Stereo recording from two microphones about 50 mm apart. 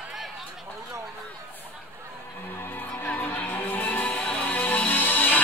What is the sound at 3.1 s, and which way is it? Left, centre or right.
Music, left.